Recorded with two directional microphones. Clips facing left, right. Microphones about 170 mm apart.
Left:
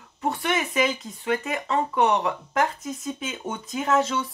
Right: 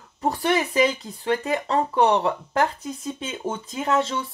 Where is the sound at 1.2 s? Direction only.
30° right (ahead or behind).